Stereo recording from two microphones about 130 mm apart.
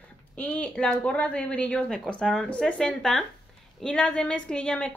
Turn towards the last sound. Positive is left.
turn(degrees=10)  # may be behind; listen again after turning